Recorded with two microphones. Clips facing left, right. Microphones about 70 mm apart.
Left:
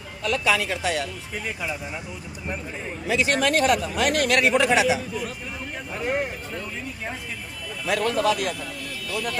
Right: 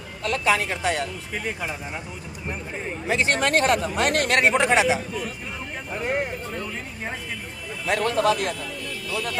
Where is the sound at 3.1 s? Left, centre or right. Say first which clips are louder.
Even; right.